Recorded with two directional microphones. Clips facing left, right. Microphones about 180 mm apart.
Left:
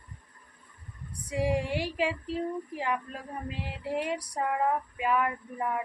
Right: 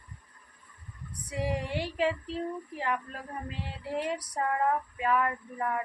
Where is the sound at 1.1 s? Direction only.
10° left (ahead or behind).